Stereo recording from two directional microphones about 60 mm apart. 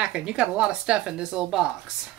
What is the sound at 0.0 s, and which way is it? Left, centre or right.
Speech, centre.